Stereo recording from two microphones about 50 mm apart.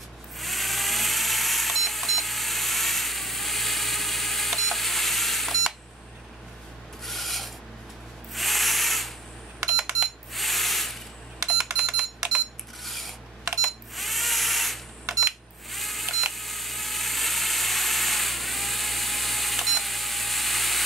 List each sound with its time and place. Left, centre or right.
0.4 s a sound: centre
7.1 s rub: centre
10.3 s a sound: centre
11.4 s alarm: centre
12.8 s filing: centre
13.6 s cash register: centre
15.7 s camera: centre